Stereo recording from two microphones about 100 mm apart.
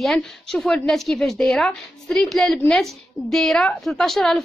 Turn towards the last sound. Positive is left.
turn(degrees=0)  # may be behind; listen again after turning